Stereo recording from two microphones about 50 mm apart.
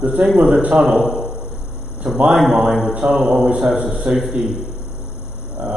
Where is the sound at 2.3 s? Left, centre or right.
Centre; by 4.2 s right.